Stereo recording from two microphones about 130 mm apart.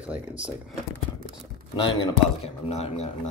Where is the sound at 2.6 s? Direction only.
55° left (ahead or behind).